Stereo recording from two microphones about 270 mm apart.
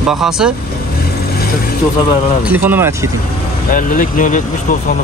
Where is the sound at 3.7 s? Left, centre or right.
Left.